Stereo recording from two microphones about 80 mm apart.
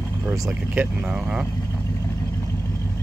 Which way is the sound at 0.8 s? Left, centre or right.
Right.